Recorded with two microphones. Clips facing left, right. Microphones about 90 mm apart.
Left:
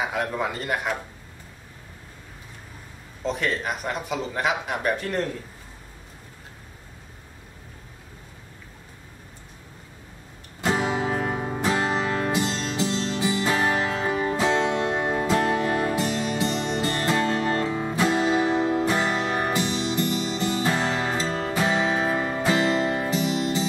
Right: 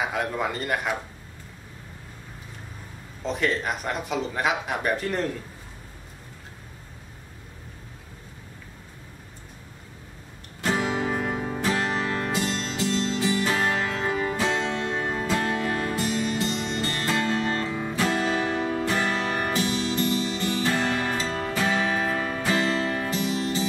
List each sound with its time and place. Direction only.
0.0 s speech: centre (ahead or behind)
3.3 s speech: centre (ahead or behind)
10.6 s music: 20° left (ahead or behind)